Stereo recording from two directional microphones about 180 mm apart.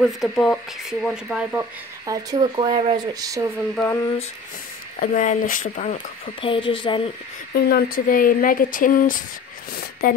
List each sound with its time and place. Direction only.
0.0 s speech: centre (ahead or behind)
2.0 s speech: 25° right (ahead or behind)
3.2 s speech: 20° right (ahead or behind)
3.7 s a sound: 10° left (ahead or behind)
5.0 s speech: 45° left (ahead or behind)
6.4 s speech: 30° left (ahead or behind)
7.5 s speech: 60° left (ahead or behind)